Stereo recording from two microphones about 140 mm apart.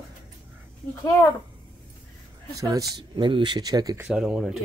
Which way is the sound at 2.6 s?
25° right (ahead or behind).